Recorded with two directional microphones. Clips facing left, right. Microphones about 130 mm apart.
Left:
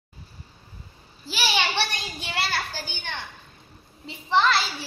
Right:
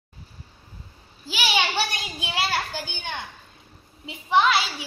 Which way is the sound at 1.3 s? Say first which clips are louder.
Right 1 dB; 10° right (ahead or behind).